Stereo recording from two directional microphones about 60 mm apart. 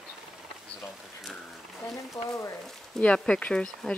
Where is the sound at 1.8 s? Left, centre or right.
Left.